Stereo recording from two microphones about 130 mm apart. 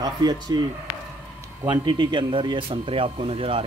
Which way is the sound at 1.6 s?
35° right (ahead or behind).